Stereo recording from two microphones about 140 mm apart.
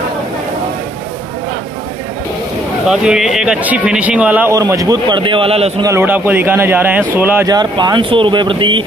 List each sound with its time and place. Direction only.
2.9 s a man's voice: 5° right (ahead or behind)
4.6 s speech: 25° right (ahead or behind); by 5.7 s 40° right (ahead or behind)
5.8 s a man's voice: 20° right (ahead or behind)
7.4 s speech: 30° right (ahead or behind)